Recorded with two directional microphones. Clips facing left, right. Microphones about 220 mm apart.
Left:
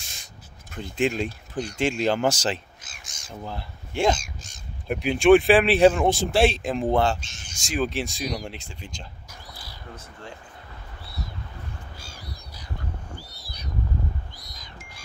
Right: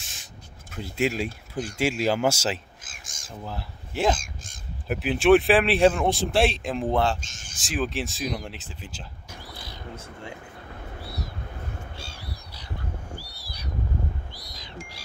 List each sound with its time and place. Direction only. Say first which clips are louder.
0.0 s rub: right 1 dB; centre (ahead or behind)
1.8 s speech: left 1 dB; 5° right (ahead or behind)
2.8 s a sound: even; 50° right (ahead or behind)
3.3 s speech: left 1 dB; centre (ahead or behind)
4.2 s crow: even; 50° right (ahead or behind)
4.8 s speech: left 2 dB; centre (ahead or behind)
7.2 s speech: even; 45° right (ahead or behind)
7.5 s speech: left 2 dB; centre (ahead or behind)
13.2 s a sound: even; 20° left (ahead or behind)